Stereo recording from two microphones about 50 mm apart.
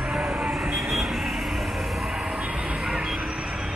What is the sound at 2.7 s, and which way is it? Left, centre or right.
Vehicle, centre.